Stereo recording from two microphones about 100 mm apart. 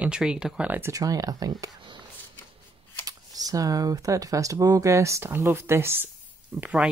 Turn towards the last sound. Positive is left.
turn(degrees=-15)  # may be behind; listen again after turning